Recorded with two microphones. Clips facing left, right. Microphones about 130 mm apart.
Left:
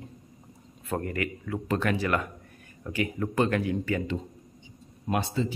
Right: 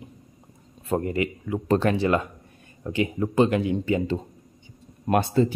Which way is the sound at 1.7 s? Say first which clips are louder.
Right 6 dB; 30° right (ahead or behind).